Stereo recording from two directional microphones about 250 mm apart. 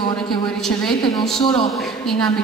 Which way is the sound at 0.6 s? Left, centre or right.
Centre.